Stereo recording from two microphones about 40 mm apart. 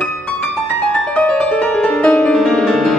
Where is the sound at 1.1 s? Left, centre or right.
Left.